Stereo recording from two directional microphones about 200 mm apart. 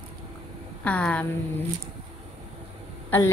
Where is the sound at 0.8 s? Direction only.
5° left (ahead or behind).